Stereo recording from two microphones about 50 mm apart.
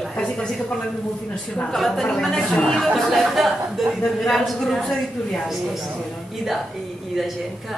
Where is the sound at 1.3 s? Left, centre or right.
Centre.